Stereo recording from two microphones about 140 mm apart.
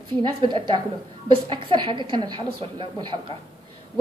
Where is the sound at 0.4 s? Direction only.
35° right (ahead or behind).